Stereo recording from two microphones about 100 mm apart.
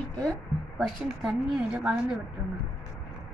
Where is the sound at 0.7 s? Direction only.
5° right (ahead or behind).